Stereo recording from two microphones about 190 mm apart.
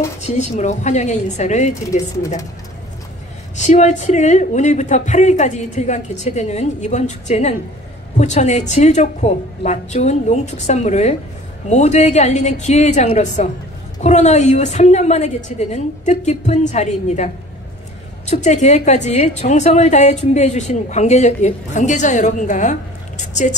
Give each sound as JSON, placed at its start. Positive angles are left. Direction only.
{"t": 0.3, "sound": "a woman's voice", "side_deg": 40}
{"t": 3.5, "sound": "a woman's voice", "side_deg": 40}